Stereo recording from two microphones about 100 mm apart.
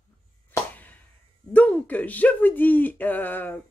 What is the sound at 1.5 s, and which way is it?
Speech, 15° left (ahead or behind).